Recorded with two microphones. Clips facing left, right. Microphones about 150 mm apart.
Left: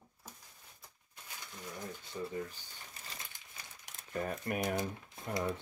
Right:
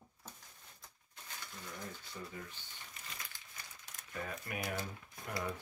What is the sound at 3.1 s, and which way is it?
Crumpling, 35° left (ahead or behind).